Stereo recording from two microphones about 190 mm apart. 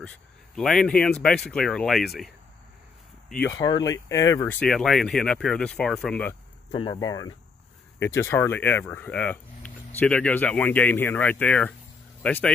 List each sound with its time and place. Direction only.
0.6 s speech: centre (ahead or behind)
3.5 s speech: 20° left (ahead or behind); by 6.3 s 5° left (ahead or behind)
6.7 s speech: 25° left (ahead or behind); by 12.4 s 5° left (ahead or behind)